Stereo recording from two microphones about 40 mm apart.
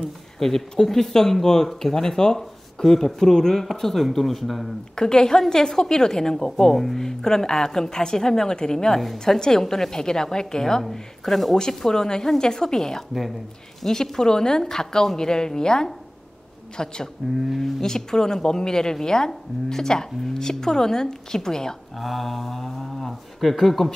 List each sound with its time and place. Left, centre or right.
0.0 s speech: centre
4.9 s speech: centre
7.1 s speech: centre
21.9 s speech: centre